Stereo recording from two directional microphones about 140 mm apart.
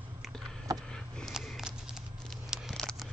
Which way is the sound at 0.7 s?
25° right (ahead or behind).